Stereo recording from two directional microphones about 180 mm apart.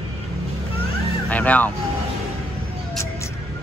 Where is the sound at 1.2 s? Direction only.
10° left (ahead or behind).